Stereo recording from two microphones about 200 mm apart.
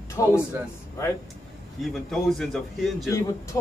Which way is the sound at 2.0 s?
Centre (ahead or behind).